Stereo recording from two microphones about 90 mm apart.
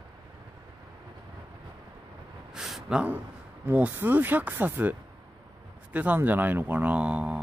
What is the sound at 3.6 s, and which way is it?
Speech, 20° right (ahead or behind).